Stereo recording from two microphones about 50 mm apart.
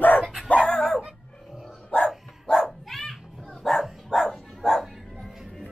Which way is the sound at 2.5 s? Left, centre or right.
Centre.